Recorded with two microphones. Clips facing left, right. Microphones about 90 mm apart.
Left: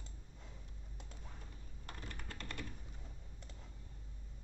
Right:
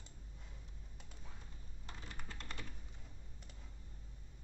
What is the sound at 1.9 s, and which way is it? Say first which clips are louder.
Computer keyboard: left 2 dB; 55° left (ahead or behind).